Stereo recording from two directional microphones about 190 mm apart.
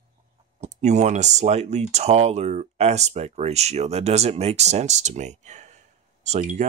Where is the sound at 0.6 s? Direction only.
35° right (ahead or behind).